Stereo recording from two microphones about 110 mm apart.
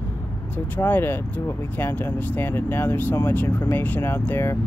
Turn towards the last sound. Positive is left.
turn(degrees=20)  # may be behind; listen again after turning